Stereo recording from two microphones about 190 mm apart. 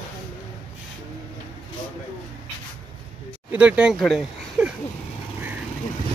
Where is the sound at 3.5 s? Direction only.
5° right (ahead or behind).